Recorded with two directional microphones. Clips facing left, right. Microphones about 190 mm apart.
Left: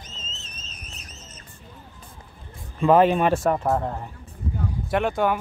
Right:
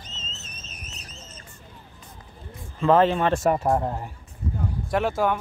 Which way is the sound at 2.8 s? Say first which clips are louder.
Left 2 dB; 15° left (ahead or behind).